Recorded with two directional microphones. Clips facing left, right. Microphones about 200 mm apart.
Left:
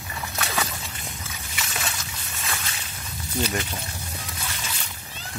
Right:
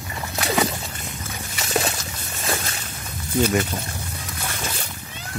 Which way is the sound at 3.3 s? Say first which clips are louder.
Right 7 dB; 50° right (ahead or behind).